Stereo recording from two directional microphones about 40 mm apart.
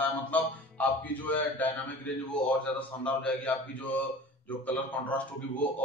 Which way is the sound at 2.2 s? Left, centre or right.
Left.